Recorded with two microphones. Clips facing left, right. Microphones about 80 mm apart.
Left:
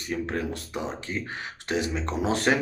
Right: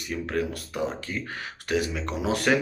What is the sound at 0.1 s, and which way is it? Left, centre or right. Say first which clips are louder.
Speech: right 1 dB; left.